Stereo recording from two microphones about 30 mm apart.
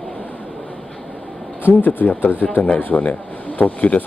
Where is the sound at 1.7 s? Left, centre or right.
Left.